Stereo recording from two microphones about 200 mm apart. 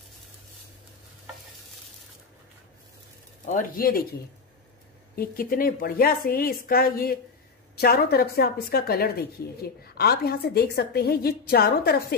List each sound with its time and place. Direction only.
3.4 s a woman's voice: 45° left (ahead or behind)
5.1 s a woman's voice: 45° left (ahead or behind)